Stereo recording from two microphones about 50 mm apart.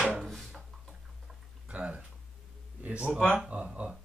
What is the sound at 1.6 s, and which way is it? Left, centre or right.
Speech, right.